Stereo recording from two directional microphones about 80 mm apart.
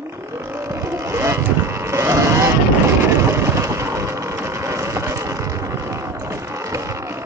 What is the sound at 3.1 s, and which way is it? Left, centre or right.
Vehicle, right.